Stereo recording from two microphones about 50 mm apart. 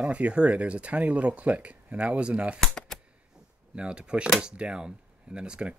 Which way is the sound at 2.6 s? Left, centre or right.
Centre.